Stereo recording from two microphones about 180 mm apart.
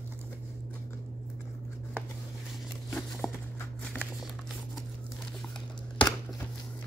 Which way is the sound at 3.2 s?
15° left (ahead or behind).